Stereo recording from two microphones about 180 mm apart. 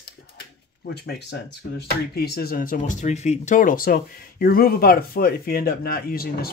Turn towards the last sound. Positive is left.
turn(degrees=55)  # may be behind; listen again after turning